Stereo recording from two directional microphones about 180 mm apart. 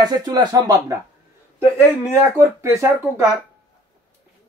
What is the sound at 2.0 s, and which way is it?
Speech, 15° right (ahead or behind).